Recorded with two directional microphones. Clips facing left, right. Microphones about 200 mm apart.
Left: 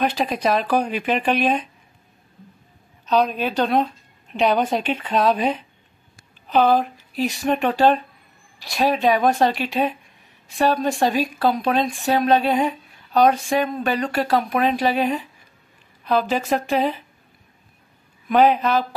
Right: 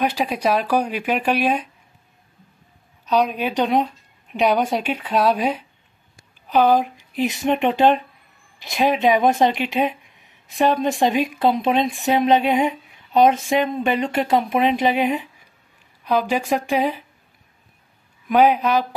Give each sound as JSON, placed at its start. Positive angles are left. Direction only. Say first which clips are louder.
{"t": 0.0, "sound": "speech", "louder": "even", "side_deg": -10}
{"t": 3.1, "sound": "a woman's voice", "louder": "even", "side_deg": -10}
{"t": 18.3, "sound": "speech", "louder": "even", "side_deg": -10}